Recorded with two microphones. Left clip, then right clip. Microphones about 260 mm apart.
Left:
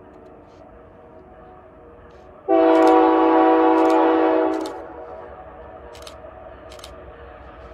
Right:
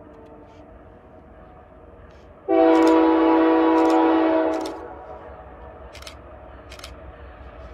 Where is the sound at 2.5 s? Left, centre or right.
Centre.